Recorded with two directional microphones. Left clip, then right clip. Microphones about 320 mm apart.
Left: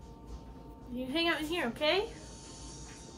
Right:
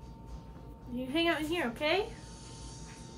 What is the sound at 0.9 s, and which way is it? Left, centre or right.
A woman's voice, centre.